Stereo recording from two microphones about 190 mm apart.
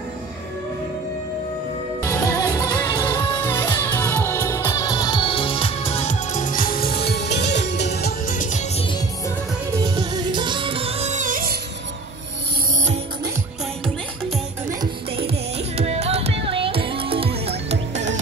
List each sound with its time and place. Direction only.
2.0 s music: 20° left (ahead or behind)
3.4 s music: 10° left (ahead or behind); by 8.1 s 60° left (ahead or behind)
8.3 s music: 40° left (ahead or behind)
9.8 s music: 20° right (ahead or behind); by 11.5 s 45° right (ahead or behind)
14.8 s music: 30° right (ahead or behind)